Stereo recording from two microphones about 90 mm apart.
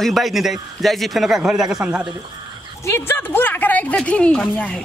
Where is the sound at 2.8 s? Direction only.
30° left (ahead or behind); by 4.8 s 10° left (ahead or behind).